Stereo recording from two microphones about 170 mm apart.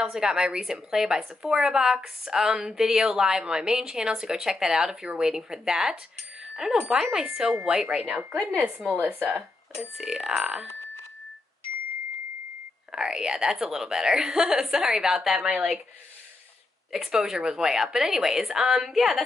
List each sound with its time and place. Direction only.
0.0 s a woman's voice: 5° right (ahead or behind)
12.9 s a woman's voice: 5° right (ahead or behind)
16.9 s a woman's voice: centre (ahead or behind)